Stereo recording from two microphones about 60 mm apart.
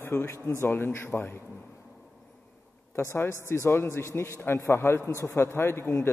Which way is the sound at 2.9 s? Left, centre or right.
Left.